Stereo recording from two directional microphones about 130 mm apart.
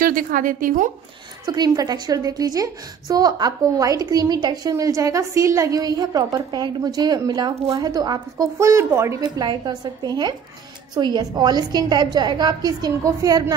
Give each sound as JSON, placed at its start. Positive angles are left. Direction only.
{"t": 0.0, "sound": "a woman's voice", "side_deg": -90}
{"t": 1.4, "sound": "a woman's voice", "side_deg": -30}
{"t": 9.2, "sound": "a woman's voice", "side_deg": -30}